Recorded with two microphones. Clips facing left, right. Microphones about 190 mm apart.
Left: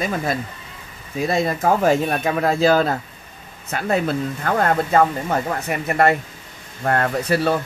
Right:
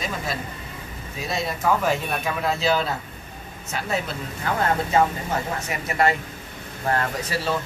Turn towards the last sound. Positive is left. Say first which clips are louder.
# left 7 dB
turn(degrees=60)  # may be behind; listen again after turning